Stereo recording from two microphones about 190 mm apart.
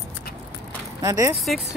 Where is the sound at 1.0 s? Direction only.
15° right (ahead or behind).